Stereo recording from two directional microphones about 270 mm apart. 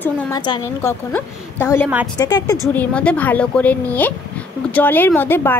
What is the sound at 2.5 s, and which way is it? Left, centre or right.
A woman's voice, centre.